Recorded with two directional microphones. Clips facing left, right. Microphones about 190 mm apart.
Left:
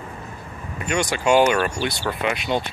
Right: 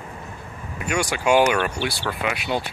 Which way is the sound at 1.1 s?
10° right (ahead or behind).